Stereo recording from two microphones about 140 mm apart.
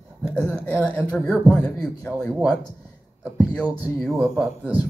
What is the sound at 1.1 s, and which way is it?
Speech, 10° right (ahead or behind).